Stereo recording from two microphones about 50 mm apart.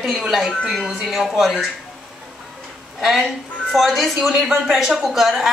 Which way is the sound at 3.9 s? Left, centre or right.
Centre.